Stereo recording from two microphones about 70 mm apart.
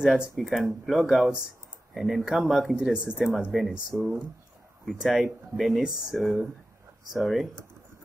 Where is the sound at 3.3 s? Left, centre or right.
Centre.